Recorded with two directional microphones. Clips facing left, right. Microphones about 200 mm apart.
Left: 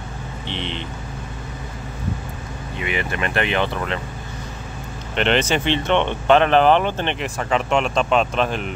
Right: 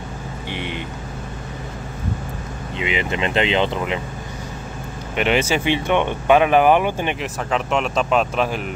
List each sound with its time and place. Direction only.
0.5 s speech: 10° right (ahead or behind)
2.8 s speech: 20° right (ahead or behind)
5.1 s speech: 10° right (ahead or behind)